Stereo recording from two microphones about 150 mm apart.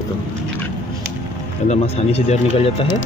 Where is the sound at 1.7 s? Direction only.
45° left (ahead or behind).